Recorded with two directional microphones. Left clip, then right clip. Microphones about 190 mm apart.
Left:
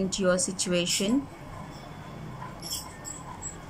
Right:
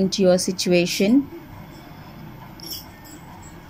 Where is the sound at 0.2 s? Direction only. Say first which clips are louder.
Right 8 dB; 10° right (ahead or behind).